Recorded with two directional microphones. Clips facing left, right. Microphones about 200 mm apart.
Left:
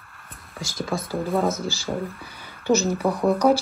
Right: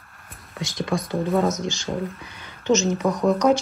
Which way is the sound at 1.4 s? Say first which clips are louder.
Right 1 dB; 30° left (ahead or behind).